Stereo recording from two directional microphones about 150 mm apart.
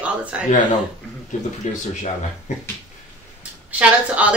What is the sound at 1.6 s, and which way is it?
Speech, 55° left (ahead or behind).